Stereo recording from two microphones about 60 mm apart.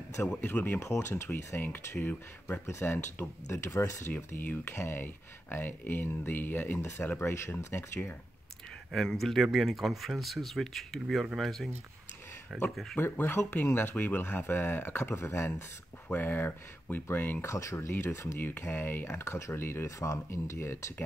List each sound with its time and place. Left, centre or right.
0.2 s speech: left
0.7 s speech: left
3.4 s speech: left
4.4 s speech: left
8.9 s speech: centre
12.9 s speech: left
16.1 s speech: left
17.5 s speech: left
18.6 s speech: left
20.0 s speech: left